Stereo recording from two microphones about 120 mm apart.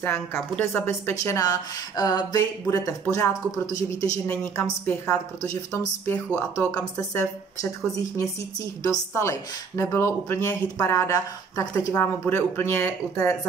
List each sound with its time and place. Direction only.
0.0 s a woman's voice: 15° left (ahead or behind)
2.0 s a sound: 35° left (ahead or behind)
2.6 s speech: 25° left (ahead or behind)
9.1 s speech: 25° left (ahead or behind)